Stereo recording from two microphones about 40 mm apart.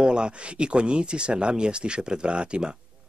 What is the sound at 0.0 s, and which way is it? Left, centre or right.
Speech, right.